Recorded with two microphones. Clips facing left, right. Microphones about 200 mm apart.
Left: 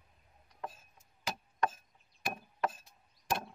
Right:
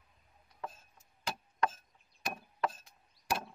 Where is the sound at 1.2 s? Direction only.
5° left (ahead or behind).